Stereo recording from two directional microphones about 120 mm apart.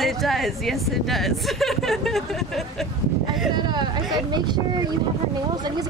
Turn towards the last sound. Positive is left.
turn(degrees=-35)  # may be behind; listen again after turning